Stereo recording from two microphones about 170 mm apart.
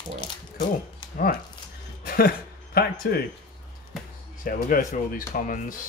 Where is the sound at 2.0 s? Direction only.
65° left (ahead or behind).